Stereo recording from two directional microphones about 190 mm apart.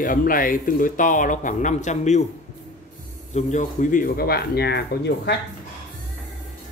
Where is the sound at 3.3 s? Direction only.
40° left (ahead or behind); by 5.3 s 60° left (ahead or behind).